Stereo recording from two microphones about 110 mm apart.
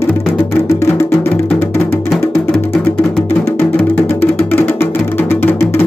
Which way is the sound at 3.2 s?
25° left (ahead or behind).